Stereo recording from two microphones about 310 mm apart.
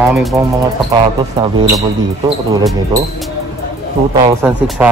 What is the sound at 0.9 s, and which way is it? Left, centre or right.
Speech, centre.